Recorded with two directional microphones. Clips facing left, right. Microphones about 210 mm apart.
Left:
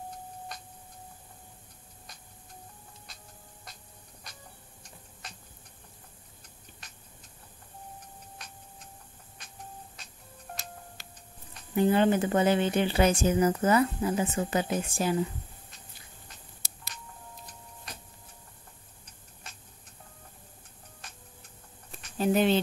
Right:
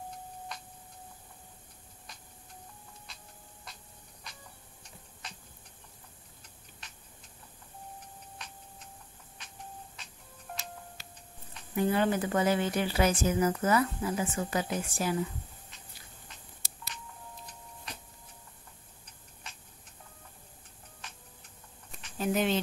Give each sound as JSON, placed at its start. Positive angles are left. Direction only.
{"t": 11.7, "sound": "speech", "side_deg": 25}
{"t": 16.6, "sound": "music", "side_deg": 45}
{"t": 22.2, "sound": "speech", "side_deg": 30}